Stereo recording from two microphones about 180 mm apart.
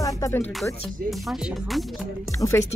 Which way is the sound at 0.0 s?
20° left (ahead or behind).